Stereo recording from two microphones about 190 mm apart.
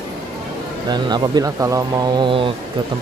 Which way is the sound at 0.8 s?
20° right (ahead or behind).